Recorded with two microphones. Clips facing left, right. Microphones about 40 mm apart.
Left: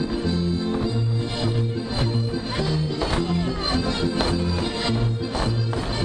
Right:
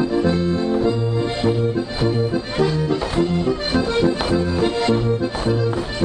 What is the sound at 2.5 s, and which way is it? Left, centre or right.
Accordion, right.